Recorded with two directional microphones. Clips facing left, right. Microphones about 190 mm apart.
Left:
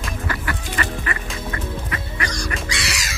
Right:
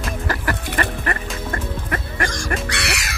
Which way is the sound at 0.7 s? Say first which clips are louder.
Right 2 dB; 50° right (ahead or behind).